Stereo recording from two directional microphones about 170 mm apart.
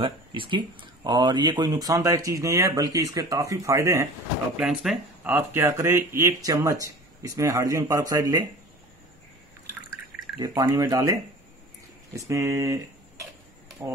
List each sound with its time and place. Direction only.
0.0 s speech: 30° right (ahead or behind)
4.6 s speech: 5° right (ahead or behind); by 8.5 s 20° right (ahead or behind)
10.4 s speech: 20° right (ahead or behind)
12.3 s speech: 15° right (ahead or behind)